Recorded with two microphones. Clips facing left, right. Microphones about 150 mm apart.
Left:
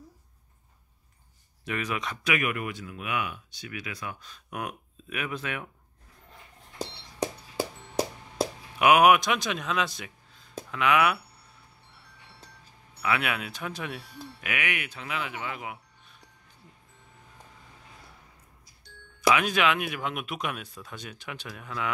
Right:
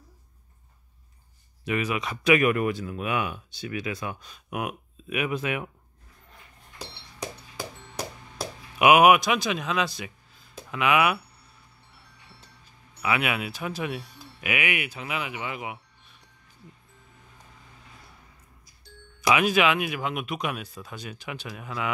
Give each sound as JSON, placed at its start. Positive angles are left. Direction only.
{"t": 1.6, "sound": "speech", "side_deg": -5}
{"t": 2.2, "sound": "speech", "side_deg": -35}
{"t": 6.8, "sound": "music", "side_deg": 35}
{"t": 8.7, "sound": "speech", "side_deg": -10}
{"t": 13.0, "sound": "speech", "side_deg": -5}
{"t": 19.3, "sound": "speech", "side_deg": -5}